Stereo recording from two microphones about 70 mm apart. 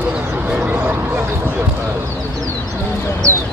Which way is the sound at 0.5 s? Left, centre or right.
Centre.